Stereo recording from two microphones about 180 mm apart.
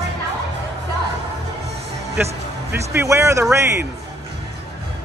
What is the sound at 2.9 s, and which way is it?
Speech, 15° right (ahead or behind).